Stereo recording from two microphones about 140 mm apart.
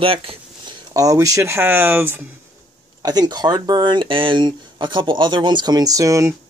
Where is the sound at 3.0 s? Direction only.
30° right (ahead or behind).